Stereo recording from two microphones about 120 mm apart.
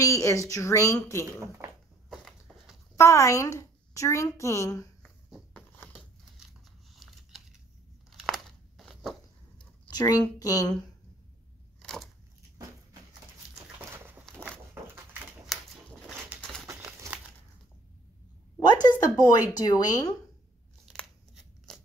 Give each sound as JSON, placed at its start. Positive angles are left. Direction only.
{"t": 0.0, "sound": "a woman's voice", "side_deg": 25}
{"t": 2.0, "sound": "a sound", "side_deg": 0}
{"t": 3.0, "sound": "a woman's voice", "side_deg": 25}
{"t": 7.0, "sound": "a sound", "side_deg": 0}
{"t": 9.9, "sound": "speech", "side_deg": 30}
{"t": 11.8, "sound": "a sound", "side_deg": 5}
{"t": 15.5, "sound": "typewriter", "side_deg": 0}
{"t": 16.3, "sound": "a sound", "side_deg": 5}
{"t": 16.7, "sound": "crumpling", "side_deg": -20}
{"t": 18.7, "sound": "speech", "side_deg": 35}
{"t": 20.8, "sound": "crunch", "side_deg": 5}
{"t": 21.7, "sound": "scissors", "side_deg": 5}